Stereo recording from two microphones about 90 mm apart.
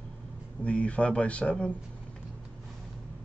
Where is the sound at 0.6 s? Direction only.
15° left (ahead or behind).